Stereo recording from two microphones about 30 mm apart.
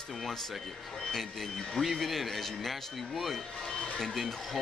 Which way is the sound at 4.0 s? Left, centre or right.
Centre.